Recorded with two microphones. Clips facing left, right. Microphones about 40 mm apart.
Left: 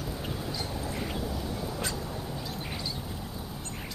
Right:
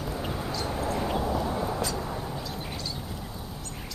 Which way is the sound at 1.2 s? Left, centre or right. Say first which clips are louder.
Right 6 dB; right.